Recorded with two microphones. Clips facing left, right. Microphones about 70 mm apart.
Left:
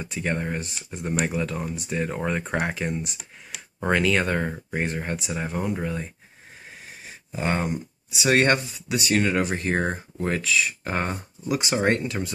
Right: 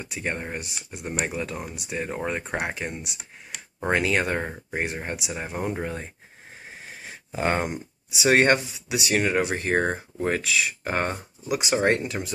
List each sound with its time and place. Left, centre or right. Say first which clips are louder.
0.2 s speech: left 3 dB; centre
3.9 s speech: left 1 dB; centre
5.6 s speech: even; right
7.3 s speech: right 1 dB; right
8.2 s speech: right 1 dB; right